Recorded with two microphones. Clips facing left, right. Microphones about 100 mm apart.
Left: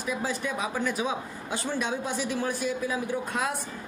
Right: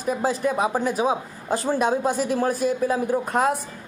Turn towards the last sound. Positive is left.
turn(degrees=-40)  # may be behind; listen again after turning